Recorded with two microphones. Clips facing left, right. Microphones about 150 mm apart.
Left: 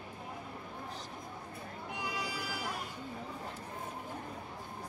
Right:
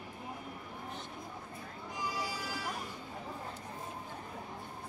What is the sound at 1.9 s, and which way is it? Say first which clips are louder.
Music: right 1 dB; 65° left (ahead or behind).